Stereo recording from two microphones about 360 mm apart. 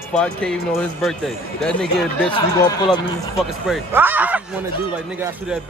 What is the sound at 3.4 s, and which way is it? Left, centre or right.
Speech, centre.